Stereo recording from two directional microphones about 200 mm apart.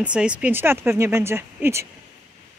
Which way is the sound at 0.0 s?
5° right (ahead or behind).